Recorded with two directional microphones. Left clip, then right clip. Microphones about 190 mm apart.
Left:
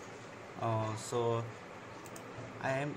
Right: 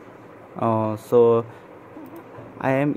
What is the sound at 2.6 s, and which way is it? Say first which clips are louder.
Speech: right 14 dB; 50° right (ahead or behind).